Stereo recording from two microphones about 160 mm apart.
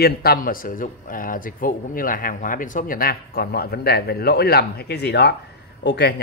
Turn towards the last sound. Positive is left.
turn(degrees=90)